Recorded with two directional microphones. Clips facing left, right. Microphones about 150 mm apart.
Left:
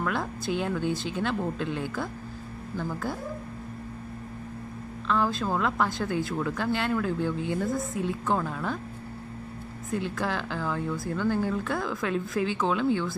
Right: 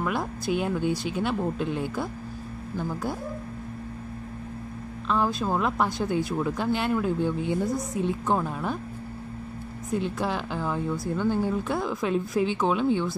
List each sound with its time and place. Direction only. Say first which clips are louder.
0.0 s a woman's voice: right 1 dB; 15° right (ahead or behind)
5.0 s a woman's voice: right 1 dB; 15° right (ahead or behind)
9.8 s a woman's voice: right 2 dB; 20° right (ahead or behind)